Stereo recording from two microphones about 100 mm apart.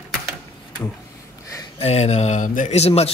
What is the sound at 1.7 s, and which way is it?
A man's voice, 90° left.